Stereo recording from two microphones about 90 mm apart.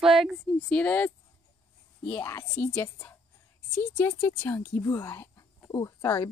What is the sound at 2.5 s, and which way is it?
Speech, 20° left (ahead or behind).